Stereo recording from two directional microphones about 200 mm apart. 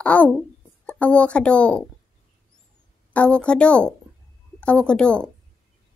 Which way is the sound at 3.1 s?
5° left (ahead or behind).